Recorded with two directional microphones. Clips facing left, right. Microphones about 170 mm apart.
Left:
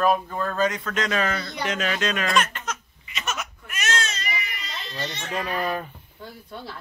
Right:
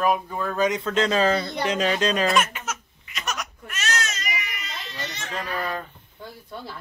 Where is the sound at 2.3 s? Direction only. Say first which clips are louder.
Right 1 dB; 10° right (ahead or behind).